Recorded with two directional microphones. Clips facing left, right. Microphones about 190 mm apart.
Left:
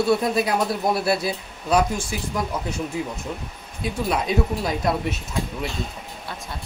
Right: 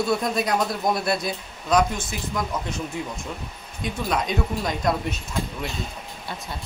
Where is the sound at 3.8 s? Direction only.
5° left (ahead or behind).